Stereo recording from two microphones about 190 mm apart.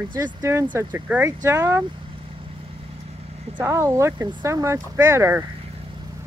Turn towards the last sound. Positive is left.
turn(degrees=-15)  # may be behind; listen again after turning